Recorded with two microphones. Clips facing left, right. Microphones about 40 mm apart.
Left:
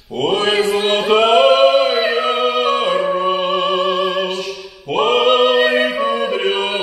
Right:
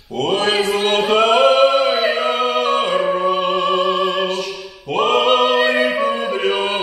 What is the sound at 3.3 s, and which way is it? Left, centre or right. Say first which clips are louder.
Music: even; left.